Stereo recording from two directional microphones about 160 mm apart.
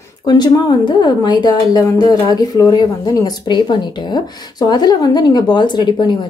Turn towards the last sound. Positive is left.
turn(degrees=25)  # may be behind; listen again after turning